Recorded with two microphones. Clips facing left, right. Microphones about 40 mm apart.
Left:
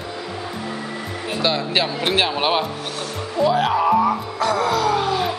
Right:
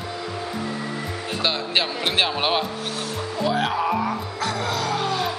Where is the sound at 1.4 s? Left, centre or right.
Centre.